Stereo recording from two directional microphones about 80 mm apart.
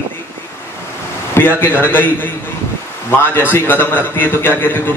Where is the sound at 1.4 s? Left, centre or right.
Left.